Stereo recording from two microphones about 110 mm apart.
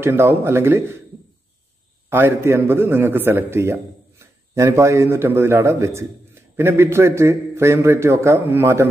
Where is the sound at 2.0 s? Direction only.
20° right (ahead or behind).